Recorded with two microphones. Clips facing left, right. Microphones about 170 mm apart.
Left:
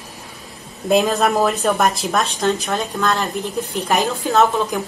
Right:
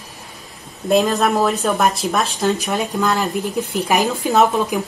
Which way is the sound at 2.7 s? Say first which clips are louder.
Right 1 dB; 15° right (ahead or behind).